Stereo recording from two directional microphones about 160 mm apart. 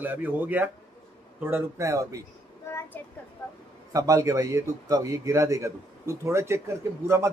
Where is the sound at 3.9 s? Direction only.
20° right (ahead or behind).